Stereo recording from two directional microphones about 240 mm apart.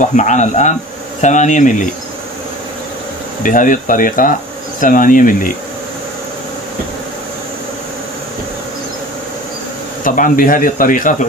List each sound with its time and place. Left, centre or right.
0.0 s speech: left
3.4 s speech: left
10.0 s speech: left